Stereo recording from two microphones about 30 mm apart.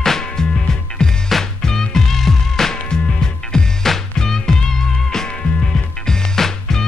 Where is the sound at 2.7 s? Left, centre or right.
Left.